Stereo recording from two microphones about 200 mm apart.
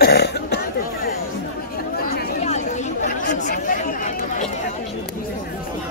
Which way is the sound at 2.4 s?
35° left (ahead or behind).